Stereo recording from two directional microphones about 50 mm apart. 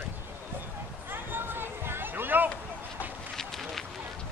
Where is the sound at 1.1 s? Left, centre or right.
Right.